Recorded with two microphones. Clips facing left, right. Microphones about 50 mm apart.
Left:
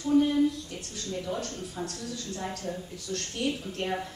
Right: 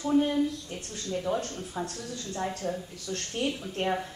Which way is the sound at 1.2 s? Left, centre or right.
Right.